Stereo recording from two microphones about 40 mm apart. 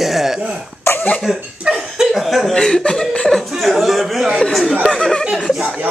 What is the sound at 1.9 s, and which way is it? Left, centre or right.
Speech, centre.